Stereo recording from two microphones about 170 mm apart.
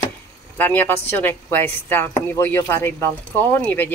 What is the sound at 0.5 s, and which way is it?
A woman's voice, 10° left (ahead or behind).